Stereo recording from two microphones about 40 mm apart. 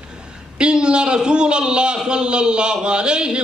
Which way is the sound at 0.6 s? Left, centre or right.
Right.